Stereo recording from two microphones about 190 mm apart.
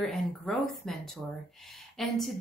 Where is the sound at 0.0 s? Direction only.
Centre (ahead or behind).